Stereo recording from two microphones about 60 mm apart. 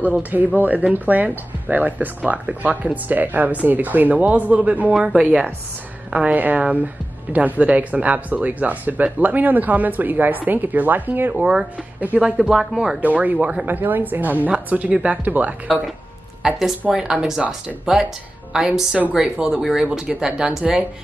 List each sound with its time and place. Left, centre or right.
0.0 s speech: right
4.9 s speech: centre; by 11.3 s right
11.3 s speech: centre
13.0 s a woman's voice: right
16.4 s speech: centre